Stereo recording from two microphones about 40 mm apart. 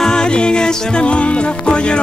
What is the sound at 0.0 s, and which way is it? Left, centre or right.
Music, centre.